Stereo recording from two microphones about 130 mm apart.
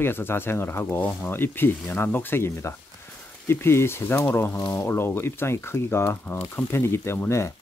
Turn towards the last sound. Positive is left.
turn(degrees=20)  # may be behind; listen again after turning